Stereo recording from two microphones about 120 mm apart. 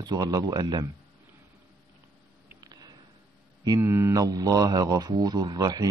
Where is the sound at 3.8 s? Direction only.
20° right (ahead or behind).